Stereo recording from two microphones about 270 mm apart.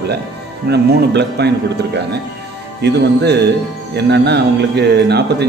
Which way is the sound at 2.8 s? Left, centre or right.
Right.